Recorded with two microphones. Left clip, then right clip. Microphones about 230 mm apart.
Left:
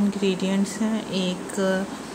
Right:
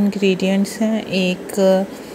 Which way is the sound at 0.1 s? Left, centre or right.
Right.